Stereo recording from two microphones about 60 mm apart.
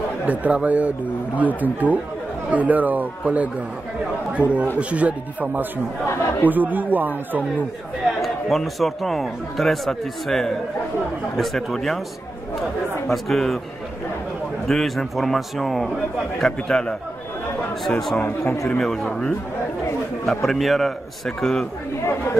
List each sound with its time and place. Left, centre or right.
0.2 s speech: right
4.4 s speech: left
4.7 s speech: right
6.0 s speech: left
6.5 s speech: right
8.2 s a man's voice: centre
13.1 s a man's voice: centre
14.7 s a man's voice: centre
20.2 s a man's voice: centre
22.0 s speech: left